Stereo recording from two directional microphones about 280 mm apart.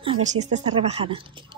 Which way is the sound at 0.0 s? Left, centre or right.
Right.